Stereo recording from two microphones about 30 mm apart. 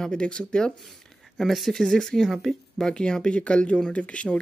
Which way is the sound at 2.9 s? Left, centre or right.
Left.